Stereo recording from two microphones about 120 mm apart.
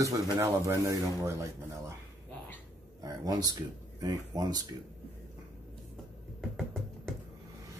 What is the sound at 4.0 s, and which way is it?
Speech, 35° right (ahead or behind).